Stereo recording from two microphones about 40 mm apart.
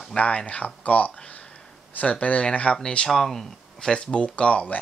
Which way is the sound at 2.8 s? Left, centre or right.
Centre.